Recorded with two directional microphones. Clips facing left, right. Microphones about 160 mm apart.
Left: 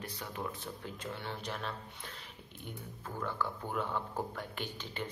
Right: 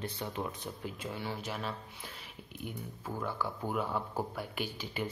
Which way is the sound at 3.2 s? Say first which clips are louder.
Even; 10° right (ahead or behind).